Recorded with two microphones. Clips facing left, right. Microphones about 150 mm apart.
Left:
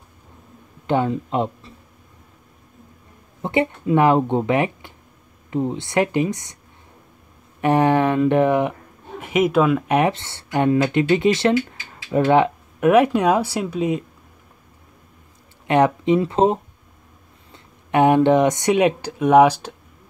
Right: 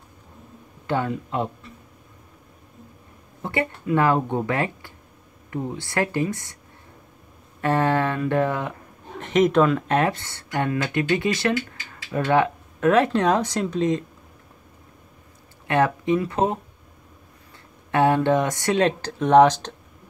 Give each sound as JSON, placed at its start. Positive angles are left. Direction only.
{"t": 0.8, "sound": "speech", "side_deg": 20}
{"t": 3.4, "sound": "speech", "side_deg": 20}
{"t": 7.6, "sound": "speech", "side_deg": 15}
{"t": 9.2, "sound": "speech", "side_deg": 10}
{"t": 15.6, "sound": "speech", "side_deg": 20}